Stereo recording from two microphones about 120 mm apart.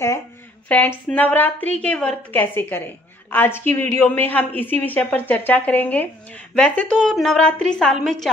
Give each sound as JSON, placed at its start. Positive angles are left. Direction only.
{"t": 0.7, "sound": "a woman's voice", "side_deg": 10}